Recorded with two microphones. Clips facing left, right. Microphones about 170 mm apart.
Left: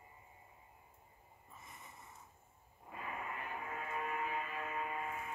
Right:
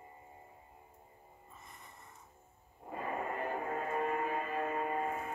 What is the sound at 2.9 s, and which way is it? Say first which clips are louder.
Music: right 7 dB; 40° right (ahead or behind).